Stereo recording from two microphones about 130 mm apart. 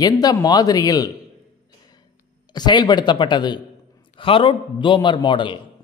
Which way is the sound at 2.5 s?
30° left (ahead or behind).